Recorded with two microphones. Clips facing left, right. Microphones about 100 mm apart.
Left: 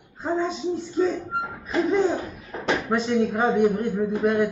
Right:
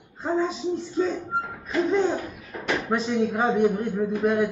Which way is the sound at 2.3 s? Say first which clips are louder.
Left 2 dB; 30° left (ahead or behind).